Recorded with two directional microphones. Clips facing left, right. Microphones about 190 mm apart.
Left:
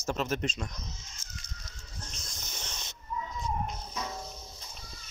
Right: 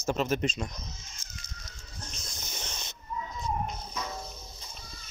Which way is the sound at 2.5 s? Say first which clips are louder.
Right 2 dB; 10° right (ahead or behind).